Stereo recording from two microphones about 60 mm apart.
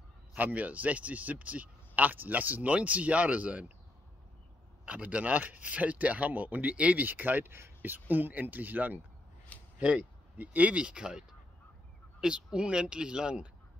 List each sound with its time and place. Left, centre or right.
0.4 s speech: right
4.8 s speech: right